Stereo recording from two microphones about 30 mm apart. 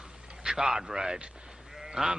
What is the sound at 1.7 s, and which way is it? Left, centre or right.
Sheep, centre.